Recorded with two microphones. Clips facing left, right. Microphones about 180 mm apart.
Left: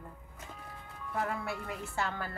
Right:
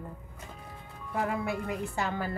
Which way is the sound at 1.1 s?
15° right (ahead or behind).